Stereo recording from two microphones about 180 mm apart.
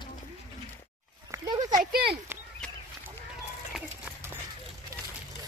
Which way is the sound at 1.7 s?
55° right (ahead or behind).